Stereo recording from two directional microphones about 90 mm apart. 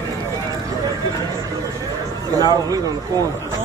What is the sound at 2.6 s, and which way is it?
Speech, 40° right (ahead or behind).